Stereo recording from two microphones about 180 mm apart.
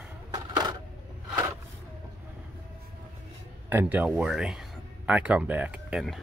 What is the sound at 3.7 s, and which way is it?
Speech, 10° right (ahead or behind).